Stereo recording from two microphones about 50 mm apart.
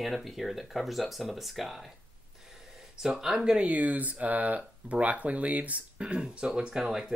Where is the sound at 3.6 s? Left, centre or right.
Right.